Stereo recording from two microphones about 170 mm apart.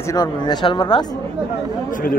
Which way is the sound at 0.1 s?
25° left (ahead or behind).